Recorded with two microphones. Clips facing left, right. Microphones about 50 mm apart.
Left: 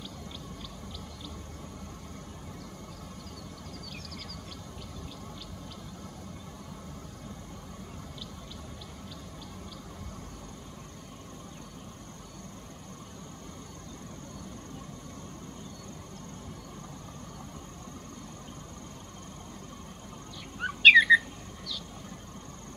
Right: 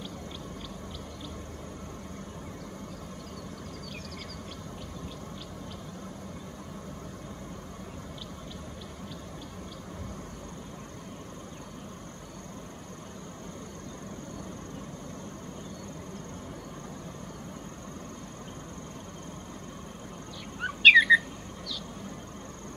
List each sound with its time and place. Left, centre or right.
20.6 s bird: centre